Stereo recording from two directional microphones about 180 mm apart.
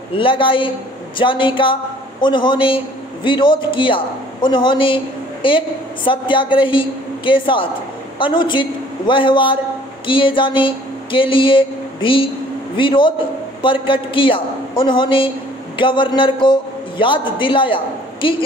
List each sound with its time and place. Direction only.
0.1 s a man's voice: 30° left (ahead or behind)